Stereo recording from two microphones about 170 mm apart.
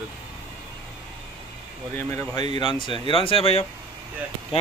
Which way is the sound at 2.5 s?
30° left (ahead or behind).